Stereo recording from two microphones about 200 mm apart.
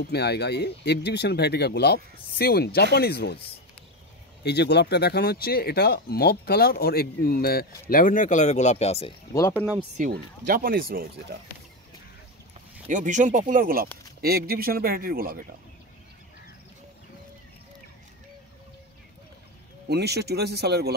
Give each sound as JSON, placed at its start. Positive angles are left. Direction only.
{"t": 0.1, "sound": "speech", "side_deg": 55}
{"t": 9.9, "sound": "speech", "side_deg": -45}
{"t": 12.8, "sound": "speech", "side_deg": -40}
{"t": 19.9, "sound": "speech", "side_deg": -55}